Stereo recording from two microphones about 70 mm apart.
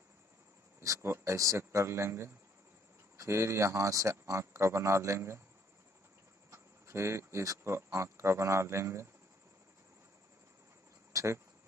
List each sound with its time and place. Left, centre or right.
0.8 s speech: right
6.5 s speech: right
11.1 s speech: right